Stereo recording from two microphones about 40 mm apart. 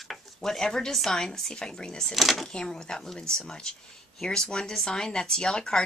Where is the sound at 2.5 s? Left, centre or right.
Centre.